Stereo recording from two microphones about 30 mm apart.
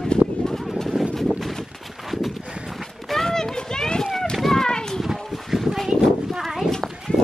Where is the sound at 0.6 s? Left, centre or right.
Centre.